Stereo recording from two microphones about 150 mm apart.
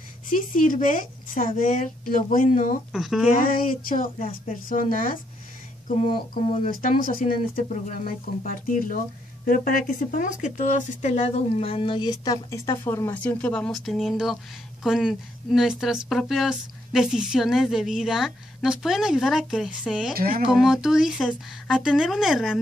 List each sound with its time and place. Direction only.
0.3 s speech: 60° left (ahead or behind)
2.9 s speech: centre (ahead or behind)
3.3 s speech: 65° left (ahead or behind)
5.9 s a sound: 45° left (ahead or behind)
6.7 s speech: 65° left (ahead or behind); by 20.2 s 5° right (ahead or behind)
20.2 s speech: 70° right (ahead or behind)
20.4 s speech: 5° right (ahead or behind)